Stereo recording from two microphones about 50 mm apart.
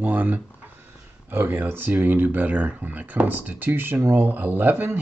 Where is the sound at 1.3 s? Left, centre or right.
Right.